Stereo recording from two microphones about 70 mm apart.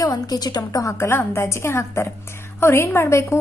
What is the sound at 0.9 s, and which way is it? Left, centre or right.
A woman's voice, left.